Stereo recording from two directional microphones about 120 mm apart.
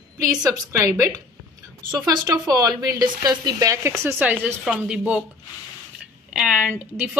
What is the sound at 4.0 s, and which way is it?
Speech, 15° right (ahead or behind).